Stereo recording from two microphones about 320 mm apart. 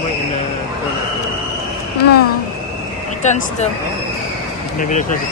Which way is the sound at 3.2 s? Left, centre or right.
Left.